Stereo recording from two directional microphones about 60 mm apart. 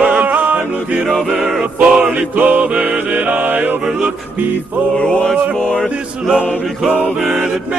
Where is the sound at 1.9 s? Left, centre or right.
Right.